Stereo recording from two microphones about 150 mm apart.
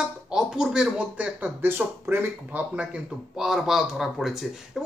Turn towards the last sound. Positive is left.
turn(degrees=0)  # may be behind; listen again after turning